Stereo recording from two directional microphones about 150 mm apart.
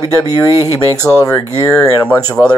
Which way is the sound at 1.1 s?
5° left (ahead or behind).